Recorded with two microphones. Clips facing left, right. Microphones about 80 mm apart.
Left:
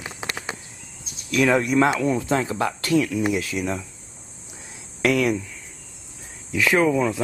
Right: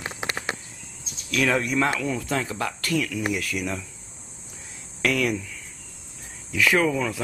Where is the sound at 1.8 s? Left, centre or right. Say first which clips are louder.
Left 5 dB; left.